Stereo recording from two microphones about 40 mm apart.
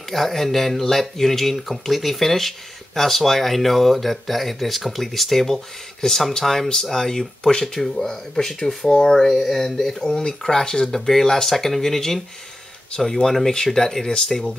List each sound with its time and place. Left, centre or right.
0.1 s speech: centre
8.9 s speech: centre
9.2 s speech: centre